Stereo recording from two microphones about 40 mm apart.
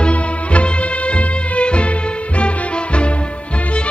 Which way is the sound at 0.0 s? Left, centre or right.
Left.